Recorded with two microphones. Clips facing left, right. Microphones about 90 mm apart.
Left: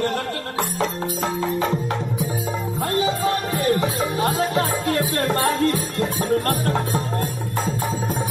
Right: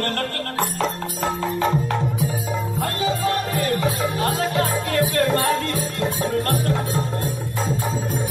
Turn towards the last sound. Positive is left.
turn(degrees=35)  # may be behind; listen again after turning